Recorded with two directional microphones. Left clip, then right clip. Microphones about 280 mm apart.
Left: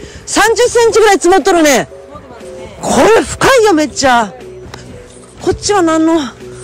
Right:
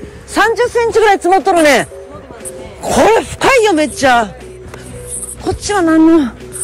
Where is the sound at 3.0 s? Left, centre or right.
Left.